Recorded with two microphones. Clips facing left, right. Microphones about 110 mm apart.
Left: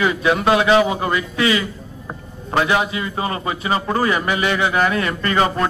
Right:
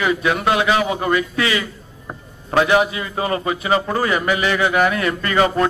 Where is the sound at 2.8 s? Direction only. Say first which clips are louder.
Right 1 dB; 30° left (ahead or behind).